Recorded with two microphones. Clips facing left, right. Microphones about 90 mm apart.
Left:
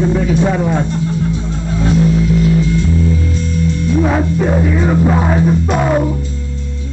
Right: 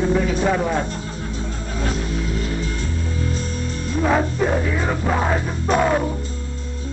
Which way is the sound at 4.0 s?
5° left (ahead or behind).